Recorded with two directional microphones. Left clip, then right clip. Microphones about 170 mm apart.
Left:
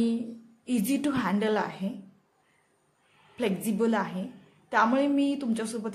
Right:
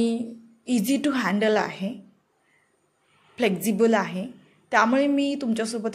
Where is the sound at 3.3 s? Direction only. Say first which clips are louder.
Right 6 dB; 20° right (ahead or behind).